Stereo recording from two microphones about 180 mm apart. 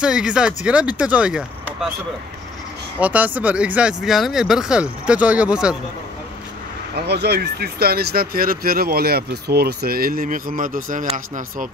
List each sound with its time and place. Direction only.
0.0 s speech: 5° right (ahead or behind)
3.0 s speech: 10° right (ahead or behind)
7.0 s speech: 65° right (ahead or behind); by 11.7 s 45° right (ahead or behind)